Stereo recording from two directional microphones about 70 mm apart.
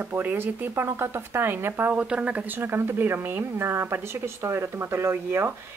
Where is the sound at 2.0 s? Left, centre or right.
Centre.